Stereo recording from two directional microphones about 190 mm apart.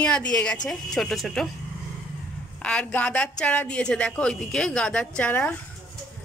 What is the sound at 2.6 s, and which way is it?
A woman's voice, 5° left (ahead or behind).